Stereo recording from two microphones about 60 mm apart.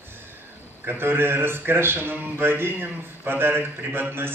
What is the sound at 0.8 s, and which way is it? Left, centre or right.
A man's voice, right.